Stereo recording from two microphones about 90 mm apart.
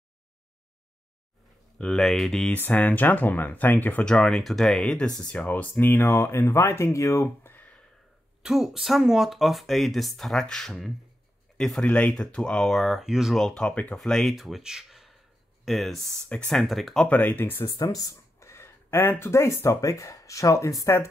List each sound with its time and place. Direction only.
1.8 s speech: 5° left (ahead or behind)
2.5 s speech: 20° left (ahead or behind)
8.4 s speech: 5° right (ahead or behind)
13.4 s speech: 10° left (ahead or behind)
17.1 s speech: 20° left (ahead or behind)
17.6 s speech: 40° left (ahead or behind)